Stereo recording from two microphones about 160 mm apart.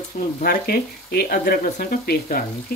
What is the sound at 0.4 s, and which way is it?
Speech, 70° left (ahead or behind).